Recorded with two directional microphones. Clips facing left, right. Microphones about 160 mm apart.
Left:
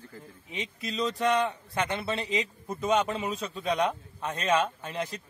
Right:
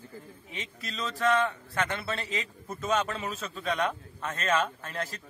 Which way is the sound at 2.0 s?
20° left (ahead or behind).